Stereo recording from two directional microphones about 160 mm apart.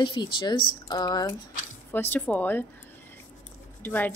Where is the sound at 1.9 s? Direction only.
10° left (ahead or behind).